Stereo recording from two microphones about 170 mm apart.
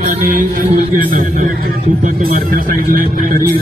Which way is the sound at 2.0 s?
60° right (ahead or behind).